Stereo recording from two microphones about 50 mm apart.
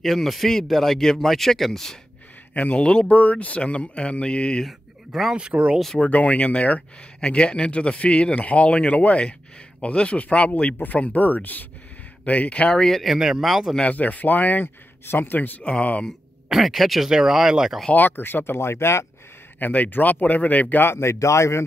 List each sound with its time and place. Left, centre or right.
0.0 s speech: centre
2.5 s speech: left
4.6 s a sound: centre
5.3 s speech: right
5.9 s speech: left
7.2 s speech: centre
12.7 s speech: centre
13.0 s speech: centre
13.8 s speech: left
15.6 s speech: left
16.4 s speech: centre
17.9 s speech: left
19.6 s speech: left
20.8 s speech: left